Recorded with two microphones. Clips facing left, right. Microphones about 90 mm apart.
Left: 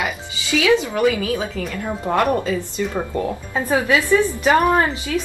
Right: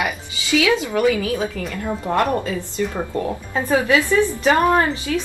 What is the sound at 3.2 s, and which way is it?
A woman's voice, 15° left (ahead or behind).